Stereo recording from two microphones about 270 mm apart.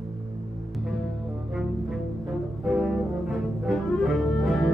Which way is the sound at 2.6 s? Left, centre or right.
Centre.